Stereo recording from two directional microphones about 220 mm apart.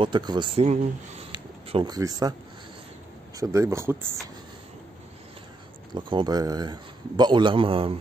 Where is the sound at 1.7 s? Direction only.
20° right (ahead or behind).